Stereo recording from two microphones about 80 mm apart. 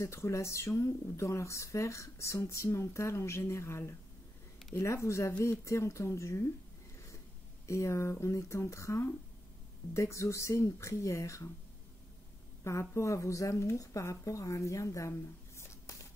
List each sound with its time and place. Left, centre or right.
0.0 s speech: left
7.6 s speech: left
12.6 s speech: left